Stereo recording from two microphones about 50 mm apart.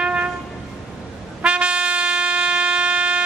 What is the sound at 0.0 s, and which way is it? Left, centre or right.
Music, right.